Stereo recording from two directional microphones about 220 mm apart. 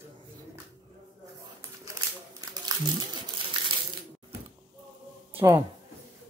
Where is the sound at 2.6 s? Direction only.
20° right (ahead or behind).